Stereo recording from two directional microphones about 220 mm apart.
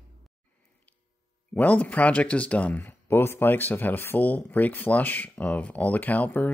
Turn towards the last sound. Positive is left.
turn(degrees=10)  # may be behind; listen again after turning